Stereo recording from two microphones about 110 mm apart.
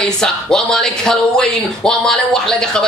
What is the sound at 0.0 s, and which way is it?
Speech, 5° left (ahead or behind).